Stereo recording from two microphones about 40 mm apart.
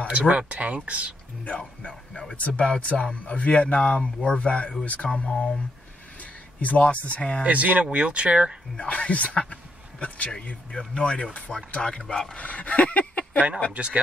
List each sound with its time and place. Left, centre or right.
0.1 s speech: right
1.6 s speech: left
6.6 s speech: left
7.4 s speech: right
8.7 s a man's voice: left
11.0 s speech: left
12.4 s a sound: left
13.8 s speech: right